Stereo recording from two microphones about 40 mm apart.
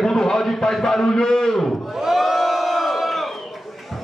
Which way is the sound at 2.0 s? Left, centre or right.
Centre.